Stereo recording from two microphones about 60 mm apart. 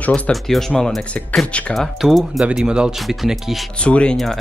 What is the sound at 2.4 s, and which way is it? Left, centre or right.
Speech, centre.